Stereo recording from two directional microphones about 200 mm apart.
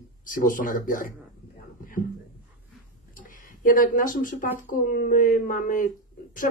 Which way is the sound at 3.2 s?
45° left (ahead or behind).